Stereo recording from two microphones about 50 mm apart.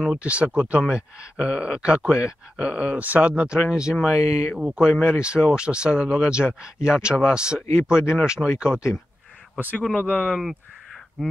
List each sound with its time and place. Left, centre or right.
0.0 s speech: right
9.9 s speech: left